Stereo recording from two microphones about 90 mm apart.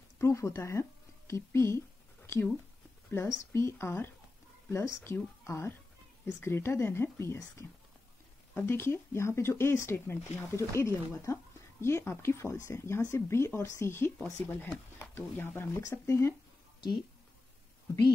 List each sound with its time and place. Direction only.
0.2 s speech: 35° left (ahead or behind)